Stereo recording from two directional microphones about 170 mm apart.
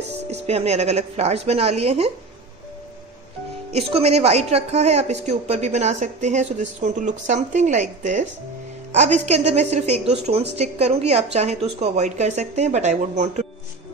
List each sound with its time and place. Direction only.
0.3 s a woman's voice: 40° right (ahead or behind)
3.7 s a woman's voice: 40° right (ahead or behind)